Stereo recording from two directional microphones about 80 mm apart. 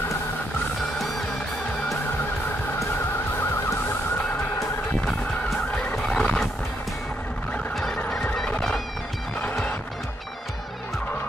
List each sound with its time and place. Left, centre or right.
5.9 s neigh: centre
7.7 s fowl: centre
8.5 s music: centre